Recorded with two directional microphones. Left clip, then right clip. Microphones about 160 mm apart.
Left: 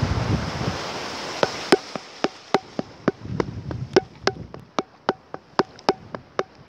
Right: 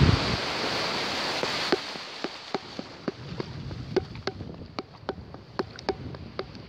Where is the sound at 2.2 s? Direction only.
55° left (ahead or behind).